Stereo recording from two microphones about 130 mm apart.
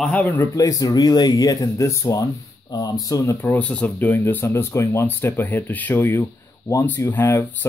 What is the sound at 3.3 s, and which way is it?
Speech, 10° left (ahead or behind).